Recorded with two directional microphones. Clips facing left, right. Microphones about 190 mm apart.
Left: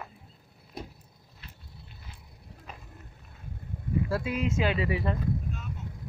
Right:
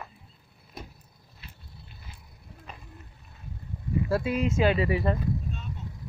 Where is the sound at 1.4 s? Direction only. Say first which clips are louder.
Right 1 dB; 10° right (ahead or behind).